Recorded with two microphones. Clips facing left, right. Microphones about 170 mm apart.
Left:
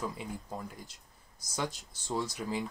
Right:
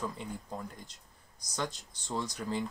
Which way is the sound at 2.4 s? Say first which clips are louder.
Even; 5° left (ahead or behind).